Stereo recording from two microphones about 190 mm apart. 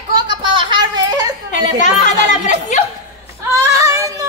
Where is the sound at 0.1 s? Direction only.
25° right (ahead or behind).